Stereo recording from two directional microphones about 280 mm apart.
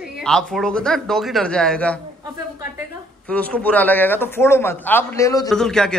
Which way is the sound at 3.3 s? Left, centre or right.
Centre.